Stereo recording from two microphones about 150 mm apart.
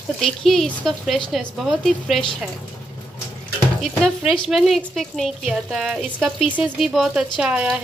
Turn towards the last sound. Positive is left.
turn(degrees=-5)  # may be behind; listen again after turning